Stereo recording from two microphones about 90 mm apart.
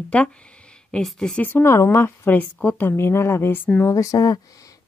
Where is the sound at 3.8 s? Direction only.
35° left (ahead or behind).